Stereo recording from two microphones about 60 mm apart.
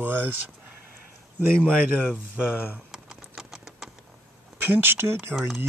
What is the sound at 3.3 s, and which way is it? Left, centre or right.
Typing, centre.